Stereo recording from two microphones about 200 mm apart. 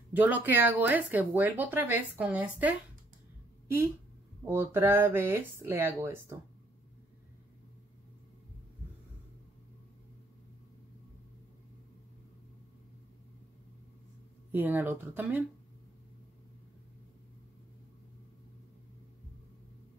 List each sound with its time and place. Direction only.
0.1 s speech: 10° right (ahead or behind)
4.5 s speech: 10° right (ahead or behind)
14.5 s speech: 10° right (ahead or behind)